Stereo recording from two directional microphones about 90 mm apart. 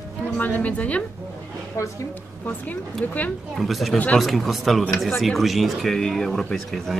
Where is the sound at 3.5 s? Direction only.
Centre (ahead or behind).